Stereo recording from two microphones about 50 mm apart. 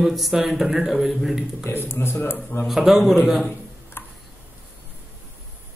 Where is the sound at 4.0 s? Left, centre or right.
Left.